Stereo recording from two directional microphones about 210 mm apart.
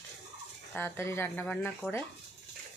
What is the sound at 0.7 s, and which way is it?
Speech, 10° left (ahead or behind).